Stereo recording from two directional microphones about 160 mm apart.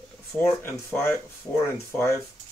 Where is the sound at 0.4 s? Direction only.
15° left (ahead or behind).